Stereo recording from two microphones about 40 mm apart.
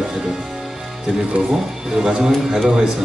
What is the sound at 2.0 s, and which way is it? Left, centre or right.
Speech, centre.